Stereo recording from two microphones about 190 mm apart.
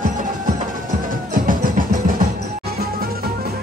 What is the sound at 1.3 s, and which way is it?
Music, 45° right (ahead or behind).